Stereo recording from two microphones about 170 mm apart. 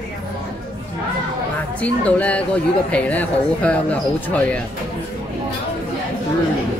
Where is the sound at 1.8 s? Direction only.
10° left (ahead or behind).